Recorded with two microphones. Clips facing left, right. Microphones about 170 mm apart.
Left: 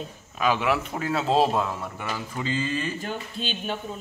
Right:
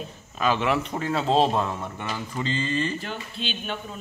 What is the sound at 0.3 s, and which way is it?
A man's voice, 10° left (ahead or behind).